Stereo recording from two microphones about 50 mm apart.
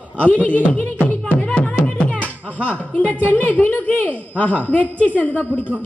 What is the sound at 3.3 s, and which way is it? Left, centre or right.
A woman's voice, left.